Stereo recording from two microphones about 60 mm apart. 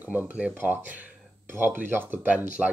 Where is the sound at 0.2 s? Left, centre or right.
Centre.